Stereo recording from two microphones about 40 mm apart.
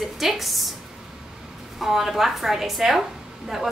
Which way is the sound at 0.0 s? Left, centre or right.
Centre.